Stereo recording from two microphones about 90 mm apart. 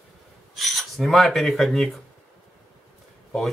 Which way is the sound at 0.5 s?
Centre (ahead or behind).